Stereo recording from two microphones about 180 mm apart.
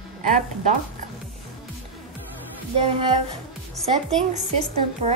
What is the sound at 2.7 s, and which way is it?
Speech, 30° right (ahead or behind).